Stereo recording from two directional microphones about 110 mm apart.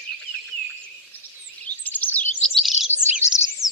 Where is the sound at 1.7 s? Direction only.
15° left (ahead or behind).